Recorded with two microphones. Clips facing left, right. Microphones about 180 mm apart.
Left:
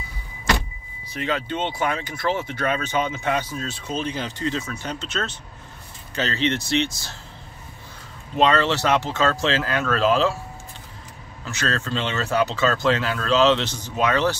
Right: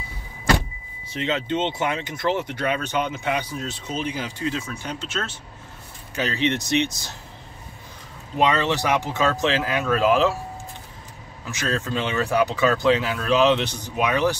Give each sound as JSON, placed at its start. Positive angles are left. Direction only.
{"t": 1.1, "sound": "speech", "side_deg": -25}
{"t": 8.4, "sound": "speech", "side_deg": -15}
{"t": 11.4, "sound": "speech", "side_deg": -15}